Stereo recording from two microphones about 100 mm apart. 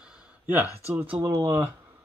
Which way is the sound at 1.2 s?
25° right (ahead or behind).